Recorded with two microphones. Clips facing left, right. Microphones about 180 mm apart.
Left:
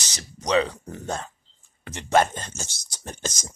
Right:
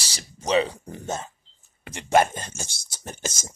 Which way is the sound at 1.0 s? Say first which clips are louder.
Even; 20° right (ahead or behind).